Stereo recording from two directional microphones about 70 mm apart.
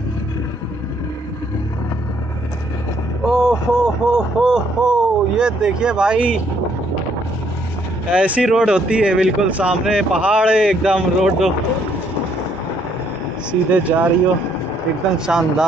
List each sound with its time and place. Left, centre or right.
3.3 s speech: centre
8.1 s speech: centre
13.5 s speech: centre
15.1 s speech: centre